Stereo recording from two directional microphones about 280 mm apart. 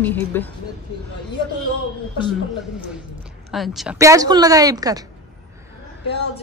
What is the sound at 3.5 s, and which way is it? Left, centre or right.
A woman's voice, centre.